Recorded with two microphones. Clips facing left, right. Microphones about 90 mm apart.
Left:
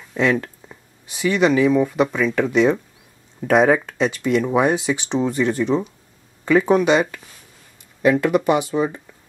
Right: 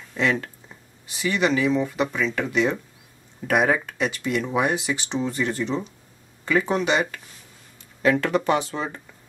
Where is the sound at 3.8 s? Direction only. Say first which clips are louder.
Left 5 dB; 20° left (ahead or behind).